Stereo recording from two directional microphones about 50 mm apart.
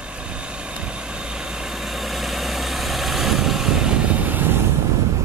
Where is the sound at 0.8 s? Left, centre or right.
Centre; by 4.4 s right.